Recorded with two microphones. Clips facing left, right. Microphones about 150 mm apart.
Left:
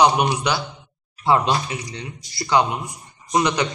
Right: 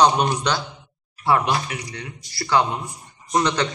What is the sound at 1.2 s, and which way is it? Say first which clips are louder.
A man's voice: left 1 dB; 20° left (ahead or behind).